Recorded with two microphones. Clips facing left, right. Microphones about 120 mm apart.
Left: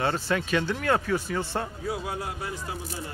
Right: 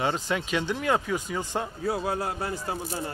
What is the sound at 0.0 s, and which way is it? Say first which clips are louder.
Speech: left 1 dB; 15° right (ahead or behind).